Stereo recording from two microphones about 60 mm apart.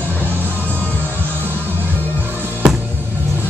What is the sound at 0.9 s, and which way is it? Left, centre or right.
Music, right.